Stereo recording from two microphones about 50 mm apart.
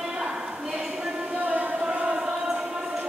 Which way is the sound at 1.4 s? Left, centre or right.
Right.